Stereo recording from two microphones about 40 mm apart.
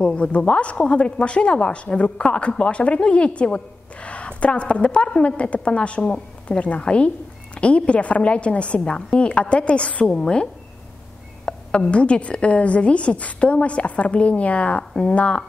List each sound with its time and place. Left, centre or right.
0.0 s a woman's voice: left